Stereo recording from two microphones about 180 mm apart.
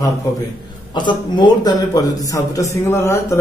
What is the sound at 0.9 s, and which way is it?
A man's voice, 25° left (ahead or behind).